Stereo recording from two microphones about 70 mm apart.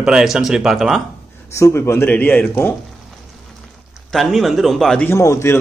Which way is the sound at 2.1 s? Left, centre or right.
Left.